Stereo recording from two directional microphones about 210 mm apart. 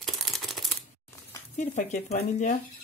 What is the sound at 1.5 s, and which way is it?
Speech, 35° left (ahead or behind).